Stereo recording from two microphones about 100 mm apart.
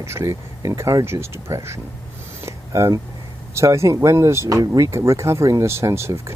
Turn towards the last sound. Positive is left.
turn(degrees=-25)  # may be behind; listen again after turning